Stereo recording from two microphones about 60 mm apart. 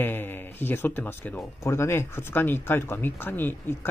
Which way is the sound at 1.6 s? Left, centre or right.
Left.